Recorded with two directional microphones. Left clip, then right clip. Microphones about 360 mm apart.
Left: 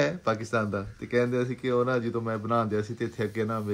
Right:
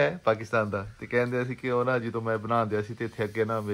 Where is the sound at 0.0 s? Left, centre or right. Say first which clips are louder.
Right 2 dB; centre.